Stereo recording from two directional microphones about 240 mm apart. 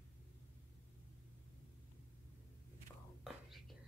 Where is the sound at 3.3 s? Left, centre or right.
Centre.